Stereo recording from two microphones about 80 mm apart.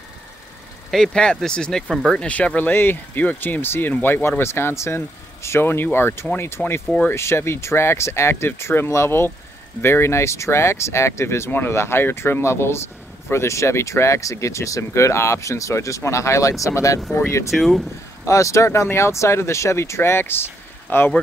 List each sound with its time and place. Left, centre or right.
0.9 s speech: centre; by 17.0 s left
17.5 s speech: centre
18.2 s speech: left